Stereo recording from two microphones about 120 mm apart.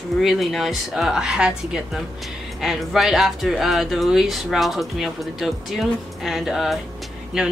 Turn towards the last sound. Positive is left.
turn(degrees=-5)  # may be behind; listen again after turning